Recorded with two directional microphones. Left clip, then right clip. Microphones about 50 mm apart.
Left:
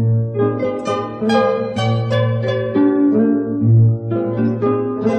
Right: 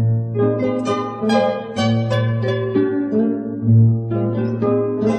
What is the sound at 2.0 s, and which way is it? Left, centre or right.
Pizzicato, left.